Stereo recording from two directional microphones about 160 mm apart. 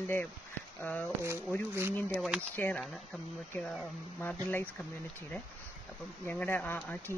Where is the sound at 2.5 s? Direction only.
10° left (ahead or behind).